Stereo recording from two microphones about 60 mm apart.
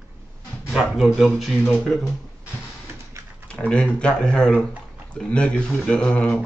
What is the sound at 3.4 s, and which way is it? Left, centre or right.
Speech, centre.